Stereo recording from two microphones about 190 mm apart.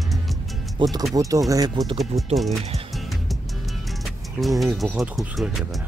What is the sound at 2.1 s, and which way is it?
Speech, 35° right (ahead or behind).